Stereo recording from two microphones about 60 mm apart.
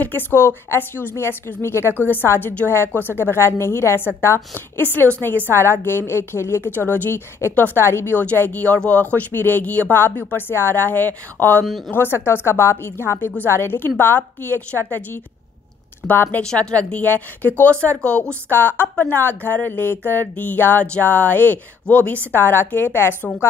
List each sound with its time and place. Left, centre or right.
0.0 s speech: left
2.0 s a woman's voice: left
4.8 s speech: left
5.5 s speech: left
7.8 s a woman's voice: left
8.2 s a woman's voice: left